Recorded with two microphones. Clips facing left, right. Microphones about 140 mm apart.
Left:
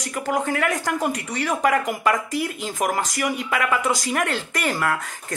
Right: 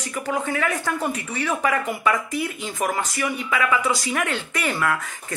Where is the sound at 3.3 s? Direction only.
45° left (ahead or behind).